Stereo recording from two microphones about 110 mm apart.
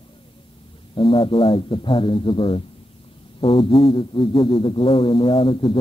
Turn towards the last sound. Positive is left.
turn(degrees=50)  # may be behind; listen again after turning